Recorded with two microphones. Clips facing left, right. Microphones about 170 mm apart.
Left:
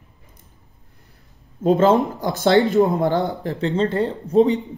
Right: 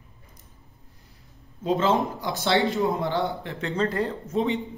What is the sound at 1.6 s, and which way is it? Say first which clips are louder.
A man's voice: left 7 dB; 45° left (ahead or behind).